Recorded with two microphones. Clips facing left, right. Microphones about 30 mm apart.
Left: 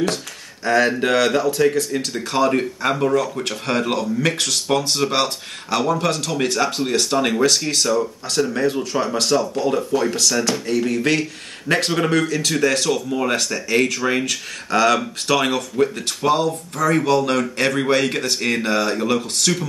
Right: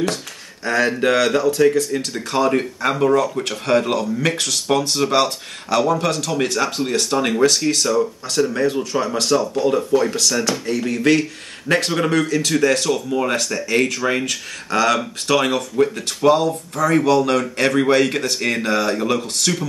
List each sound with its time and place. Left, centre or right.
0.7 s speech: centre